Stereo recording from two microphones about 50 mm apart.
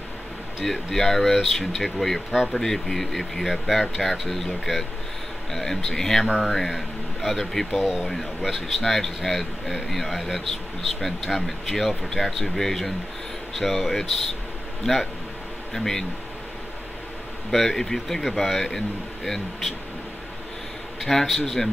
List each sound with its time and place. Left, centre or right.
0.7 s speech: centre
6.2 s speech: centre
6.5 s speech: centre
15.7 s speech: centre
17.5 s speech: centre
21.0 s speech: centre